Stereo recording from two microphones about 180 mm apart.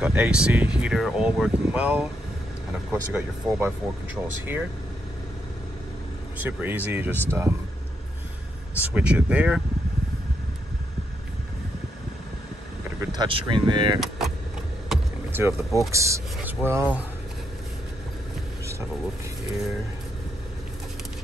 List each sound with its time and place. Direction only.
0.0 s speech: 5° right (ahead or behind)
6.3 s speech: 10° right (ahead or behind)
8.8 s speech: 5° right (ahead or behind)
13.1 s speech: 25° right (ahead or behind)
13.9 s speech: centre (ahead or behind)
14.9 s vehicle: 10° right (ahead or behind)
15.9 s speech: 15° right (ahead or behind)